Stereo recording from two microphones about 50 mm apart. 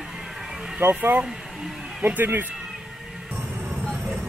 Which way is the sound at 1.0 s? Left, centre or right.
Right.